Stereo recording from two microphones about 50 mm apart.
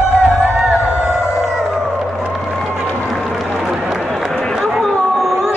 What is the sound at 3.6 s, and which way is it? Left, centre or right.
Run, centre.